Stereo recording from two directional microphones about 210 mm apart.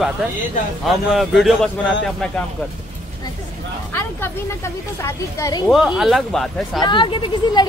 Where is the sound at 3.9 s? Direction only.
10° left (ahead or behind).